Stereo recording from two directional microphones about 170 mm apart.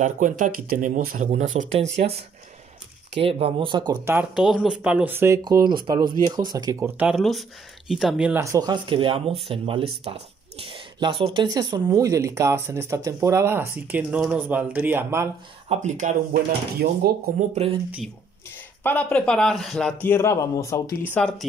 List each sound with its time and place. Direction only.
0.0 s speech: 50° right (ahead or behind)
3.2 s speech: 35° right (ahead or behind)
4.0 s speech: 10° right (ahead or behind)
7.0 s speech: 5° right (ahead or behind)
15.7 s speech: 45° right (ahead or behind)
17.3 s speech: 55° right (ahead or behind)
18.8 s a man's voice: 10° left (ahead or behind)
21.1 s a man's voice: 5° left (ahead or behind)